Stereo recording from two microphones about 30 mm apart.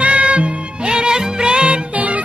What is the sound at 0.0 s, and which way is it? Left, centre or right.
Music, right.